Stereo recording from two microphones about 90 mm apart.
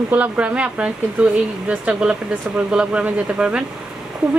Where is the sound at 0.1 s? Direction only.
15° right (ahead or behind).